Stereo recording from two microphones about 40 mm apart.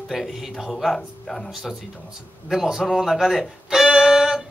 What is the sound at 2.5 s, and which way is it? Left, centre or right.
Music, centre.